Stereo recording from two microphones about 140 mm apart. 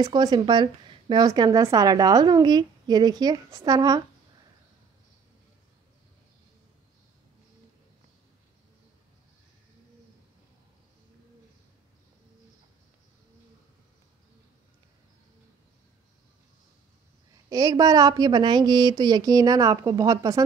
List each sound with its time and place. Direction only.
0.0 s speech: 30° right (ahead or behind)
17.5 s speech: 25° right (ahead or behind)